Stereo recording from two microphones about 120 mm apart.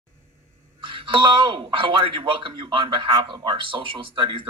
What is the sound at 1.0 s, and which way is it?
A man's voice, 40° right (ahead or behind).